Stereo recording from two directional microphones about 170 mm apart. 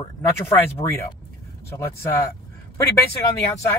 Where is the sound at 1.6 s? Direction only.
15° left (ahead or behind).